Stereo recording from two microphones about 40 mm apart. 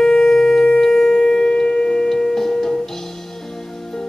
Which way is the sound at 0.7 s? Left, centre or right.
Centre.